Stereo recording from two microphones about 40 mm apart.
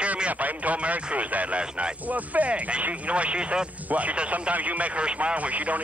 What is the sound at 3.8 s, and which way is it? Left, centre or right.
Speech, right.